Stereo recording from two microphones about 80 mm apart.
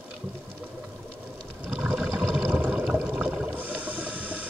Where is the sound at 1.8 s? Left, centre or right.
Centre.